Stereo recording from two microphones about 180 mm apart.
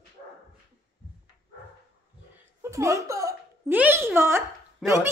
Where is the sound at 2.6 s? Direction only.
15° right (ahead or behind).